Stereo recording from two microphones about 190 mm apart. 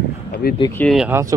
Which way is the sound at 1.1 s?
15° right (ahead or behind).